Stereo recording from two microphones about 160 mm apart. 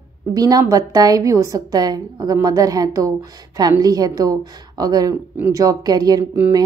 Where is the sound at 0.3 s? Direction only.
25° right (ahead or behind).